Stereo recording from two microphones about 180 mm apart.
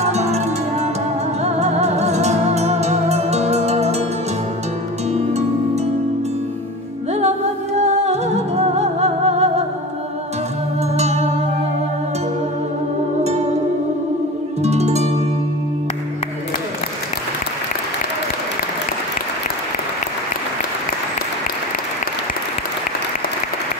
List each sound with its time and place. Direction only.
0.0 s music: 40° right (ahead or behind)
7.2 s music: 40° right (ahead or behind)
11.0 s music: 35° right (ahead or behind)
14.6 s music: 35° right (ahead or behind)